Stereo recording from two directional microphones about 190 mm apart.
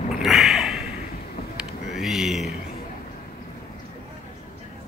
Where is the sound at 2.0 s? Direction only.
Centre (ahead or behind).